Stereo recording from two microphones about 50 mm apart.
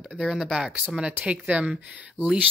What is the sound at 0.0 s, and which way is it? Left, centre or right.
Speech, centre.